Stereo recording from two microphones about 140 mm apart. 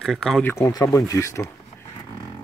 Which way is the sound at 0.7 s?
25° left (ahead or behind).